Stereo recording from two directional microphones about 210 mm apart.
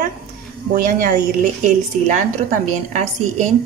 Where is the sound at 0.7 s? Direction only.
40° right (ahead or behind).